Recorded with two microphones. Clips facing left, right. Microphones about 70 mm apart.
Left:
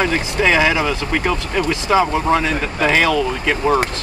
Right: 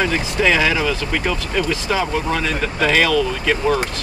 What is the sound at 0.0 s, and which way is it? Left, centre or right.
Speech, left.